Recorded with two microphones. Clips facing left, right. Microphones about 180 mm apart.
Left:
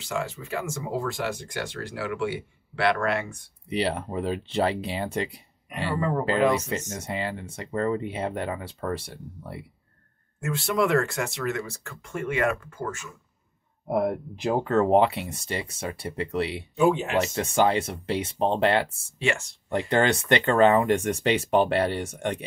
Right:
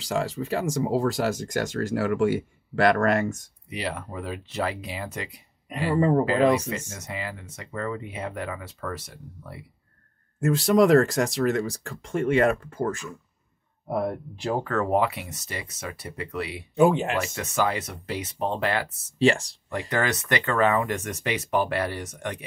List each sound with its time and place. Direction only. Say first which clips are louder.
0.0 s speech: right 4 dB; 35° right (ahead or behind)
3.7 s speech: left 5 dB; 30° left (ahead or behind)
5.9 s speech: right 3 dB; 30° right (ahead or behind)
6.9 s speech: left 4 dB; 30° left (ahead or behind)
10.4 s speech: right 6 dB; 35° right (ahead or behind)
13.8 s speech: left 2 dB; 20° left (ahead or behind)
19.1 s speech: right 6 dB; 35° right (ahead or behind)
19.7 s speech: left 4 dB; 30° left (ahead or behind)